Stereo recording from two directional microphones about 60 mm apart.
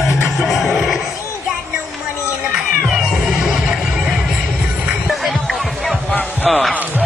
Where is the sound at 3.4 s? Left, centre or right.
Centre.